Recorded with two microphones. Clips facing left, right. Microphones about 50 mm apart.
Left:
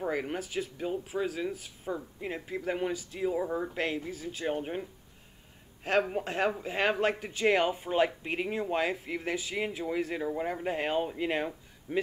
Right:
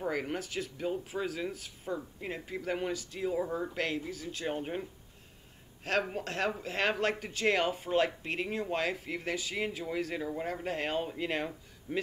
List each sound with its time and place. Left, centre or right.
0.0 s speech: centre
6.1 s speech: centre